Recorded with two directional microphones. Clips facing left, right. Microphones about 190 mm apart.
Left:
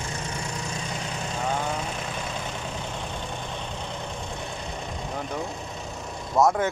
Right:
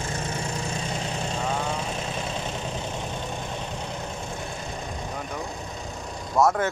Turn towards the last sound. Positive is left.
turn(degrees=15)  # may be behind; listen again after turning